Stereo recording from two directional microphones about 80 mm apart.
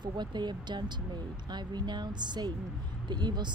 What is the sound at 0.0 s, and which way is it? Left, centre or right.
Speech, right.